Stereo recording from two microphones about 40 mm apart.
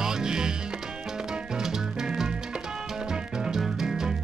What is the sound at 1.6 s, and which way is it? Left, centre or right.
Music, centre.